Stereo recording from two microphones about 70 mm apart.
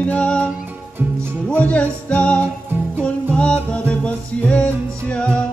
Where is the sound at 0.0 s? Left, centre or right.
Centre.